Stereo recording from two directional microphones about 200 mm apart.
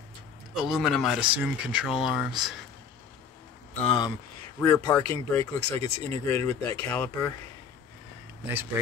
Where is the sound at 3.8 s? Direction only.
25° left (ahead or behind).